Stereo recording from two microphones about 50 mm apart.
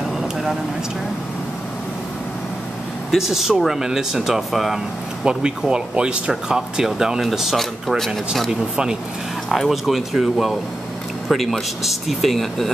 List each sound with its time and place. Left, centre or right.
3.1 s speech: centre
5.2 s speech: centre
9.5 s speech: centre